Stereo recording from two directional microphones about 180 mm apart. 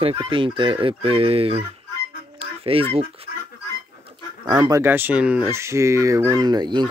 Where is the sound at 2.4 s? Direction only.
30° right (ahead or behind).